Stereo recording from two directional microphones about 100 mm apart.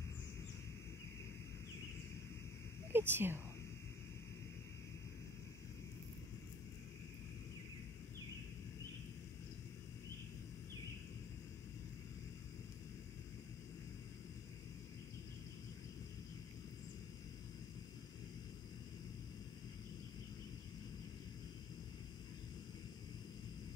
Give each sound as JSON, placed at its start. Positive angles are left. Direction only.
{"t": 2.9, "sound": "speech", "side_deg": -20}